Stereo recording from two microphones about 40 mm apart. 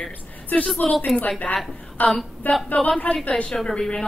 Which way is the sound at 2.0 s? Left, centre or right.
Left.